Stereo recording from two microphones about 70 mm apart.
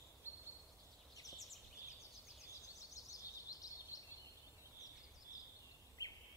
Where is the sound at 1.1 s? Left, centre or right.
Left.